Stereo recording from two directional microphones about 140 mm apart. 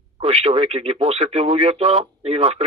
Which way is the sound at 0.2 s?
50° right (ahead or behind).